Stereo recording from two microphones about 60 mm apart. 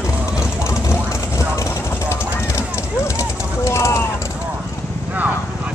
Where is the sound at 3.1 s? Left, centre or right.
Left.